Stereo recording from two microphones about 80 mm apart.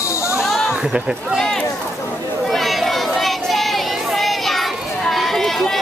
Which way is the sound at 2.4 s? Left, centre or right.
Centre.